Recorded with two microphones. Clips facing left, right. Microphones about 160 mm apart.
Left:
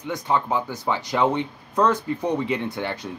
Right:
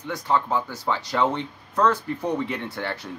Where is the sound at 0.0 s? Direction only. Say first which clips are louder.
Even; 15° left (ahead or behind).